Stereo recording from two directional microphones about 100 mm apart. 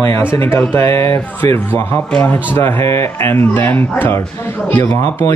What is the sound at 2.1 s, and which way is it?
Speech, 15° left (ahead or behind).